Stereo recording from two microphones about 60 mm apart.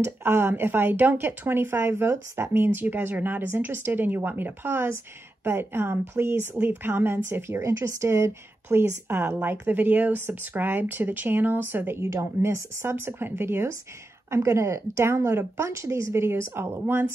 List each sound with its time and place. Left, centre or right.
0.0 s speech: right
12.0 s speech: right
14.3 s speech: right